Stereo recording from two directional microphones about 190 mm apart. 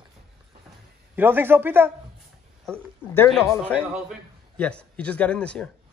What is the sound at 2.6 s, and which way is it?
A man's voice, 10° left (ahead or behind).